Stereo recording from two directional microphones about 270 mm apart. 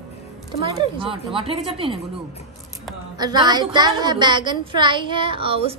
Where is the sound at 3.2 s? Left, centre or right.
Centre.